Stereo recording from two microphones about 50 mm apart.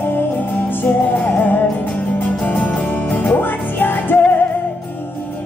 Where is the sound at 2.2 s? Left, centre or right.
Left.